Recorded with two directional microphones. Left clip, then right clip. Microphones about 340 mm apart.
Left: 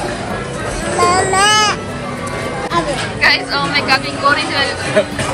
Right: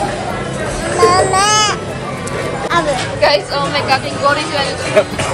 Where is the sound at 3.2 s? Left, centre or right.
Centre.